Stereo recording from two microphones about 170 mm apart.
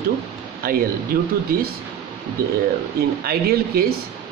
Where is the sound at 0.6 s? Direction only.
65° right (ahead or behind).